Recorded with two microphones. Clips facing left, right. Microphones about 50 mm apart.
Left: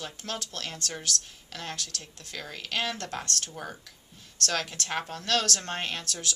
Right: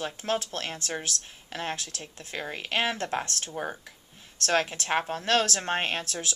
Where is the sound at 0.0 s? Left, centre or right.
Right.